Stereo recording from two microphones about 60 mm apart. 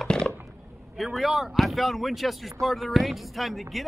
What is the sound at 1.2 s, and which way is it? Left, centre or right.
Speech, centre.